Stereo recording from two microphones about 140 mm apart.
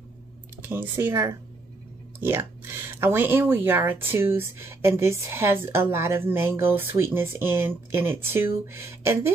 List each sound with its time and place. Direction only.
0.6 s speech: 15° right (ahead or behind)